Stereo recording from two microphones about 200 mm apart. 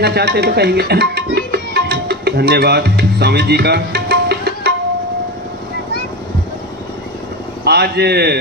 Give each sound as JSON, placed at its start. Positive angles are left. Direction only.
{"t": 0.0, "sound": "speech", "side_deg": -55}
{"t": 7.6, "sound": "a man's voice", "side_deg": -55}